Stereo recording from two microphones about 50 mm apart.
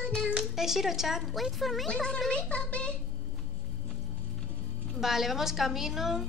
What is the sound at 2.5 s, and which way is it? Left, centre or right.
Speech, left.